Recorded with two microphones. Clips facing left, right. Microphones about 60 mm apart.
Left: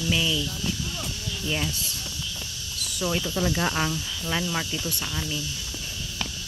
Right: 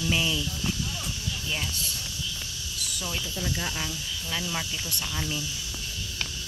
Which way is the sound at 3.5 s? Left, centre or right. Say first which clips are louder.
Left 6 dB; left.